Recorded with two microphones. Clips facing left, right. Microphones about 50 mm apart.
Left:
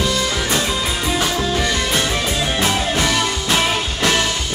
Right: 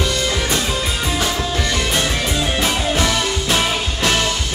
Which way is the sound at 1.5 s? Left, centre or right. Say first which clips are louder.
Left 1 dB; centre.